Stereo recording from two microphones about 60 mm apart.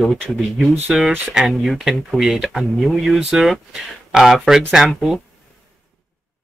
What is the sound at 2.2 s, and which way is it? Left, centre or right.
Speech, centre.